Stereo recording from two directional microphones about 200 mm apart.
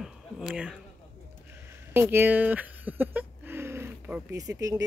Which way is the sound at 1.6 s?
10° right (ahead or behind).